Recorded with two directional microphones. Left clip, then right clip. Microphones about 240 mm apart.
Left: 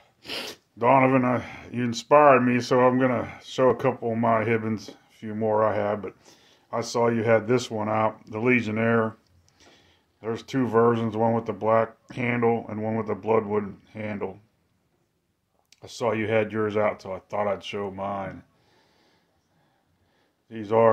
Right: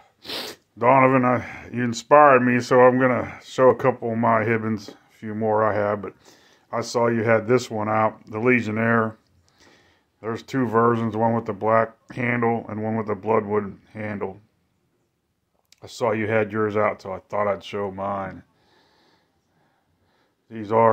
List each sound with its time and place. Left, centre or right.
0.0 s speech: centre
15.7 s speech: centre
20.4 s speech: centre